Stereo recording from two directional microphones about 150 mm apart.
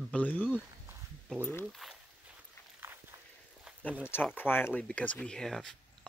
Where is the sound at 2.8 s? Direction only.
15° right (ahead or behind).